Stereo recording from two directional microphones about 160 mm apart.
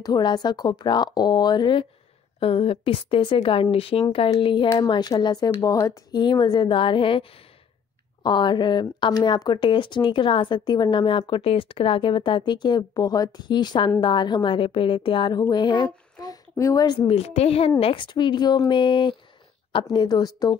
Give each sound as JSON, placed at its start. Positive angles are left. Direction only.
{"t": 0.0, "sound": "a woman's voice", "side_deg": 25}
{"t": 17.1, "sound": "a woman's voice", "side_deg": 40}